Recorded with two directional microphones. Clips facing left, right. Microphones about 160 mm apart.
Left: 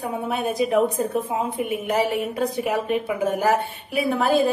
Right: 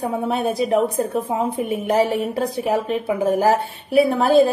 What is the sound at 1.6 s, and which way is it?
A woman's voice, 40° right (ahead or behind).